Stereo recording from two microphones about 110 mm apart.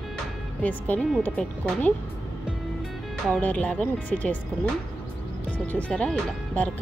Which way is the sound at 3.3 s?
15° left (ahead or behind).